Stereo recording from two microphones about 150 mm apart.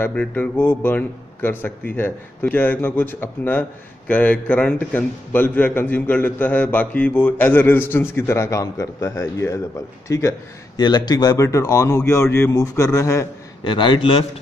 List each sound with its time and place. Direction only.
0.0 s a man's voice: 10° left (ahead or behind)
13.7 s a man's voice: 35° left (ahead or behind)